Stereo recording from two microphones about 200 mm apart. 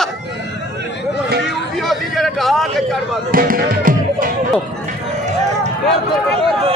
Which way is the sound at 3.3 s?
45° right (ahead or behind).